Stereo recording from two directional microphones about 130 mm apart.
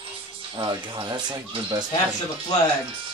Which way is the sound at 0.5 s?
35° right (ahead or behind).